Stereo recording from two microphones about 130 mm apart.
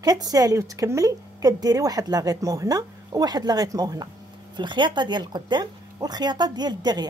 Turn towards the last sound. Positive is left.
turn(degrees=-35)  # may be behind; listen again after turning